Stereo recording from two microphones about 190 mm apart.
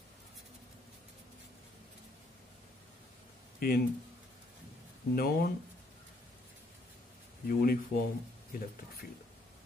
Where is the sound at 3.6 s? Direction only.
50° left (ahead or behind).